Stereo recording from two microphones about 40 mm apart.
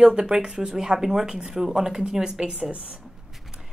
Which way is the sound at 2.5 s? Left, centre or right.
Right.